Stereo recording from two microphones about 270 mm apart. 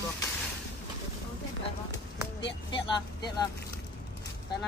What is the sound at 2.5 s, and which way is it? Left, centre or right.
A woman's voice, centre.